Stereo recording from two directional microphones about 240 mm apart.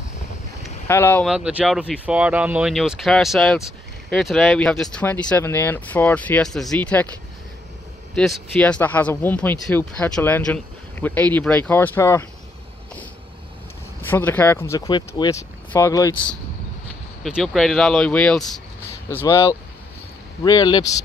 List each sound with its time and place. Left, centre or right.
0.8 s speech: centre
1.3 s speech: centre
8.1 s speech: centre
14.0 s speech: centre